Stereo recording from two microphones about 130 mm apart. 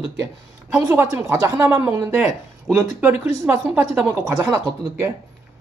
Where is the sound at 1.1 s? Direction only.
20° right (ahead or behind).